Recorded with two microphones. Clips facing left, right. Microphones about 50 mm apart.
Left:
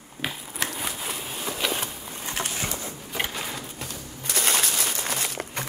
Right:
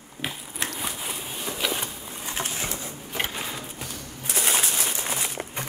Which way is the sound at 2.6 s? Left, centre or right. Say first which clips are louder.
Left 1 dB; right.